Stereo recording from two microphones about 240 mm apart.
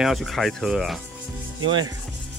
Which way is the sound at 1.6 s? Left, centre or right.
Centre.